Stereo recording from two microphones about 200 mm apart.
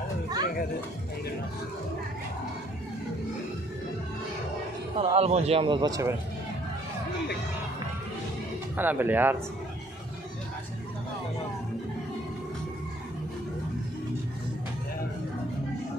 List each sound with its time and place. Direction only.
4.9 s a man's voice: 30° right (ahead or behind)
8.7 s speech: 10° right (ahead or behind)